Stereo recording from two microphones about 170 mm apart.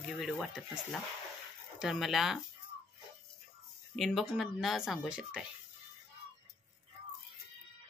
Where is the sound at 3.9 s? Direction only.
Centre (ahead or behind).